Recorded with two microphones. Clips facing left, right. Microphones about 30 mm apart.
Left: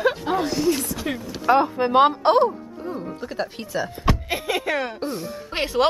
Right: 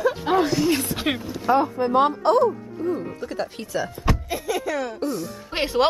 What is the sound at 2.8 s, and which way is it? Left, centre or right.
Music, left.